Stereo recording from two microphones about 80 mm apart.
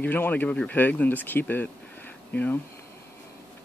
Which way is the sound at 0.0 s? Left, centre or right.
Left.